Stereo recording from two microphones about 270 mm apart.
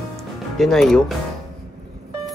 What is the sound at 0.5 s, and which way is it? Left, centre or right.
Speech, centre.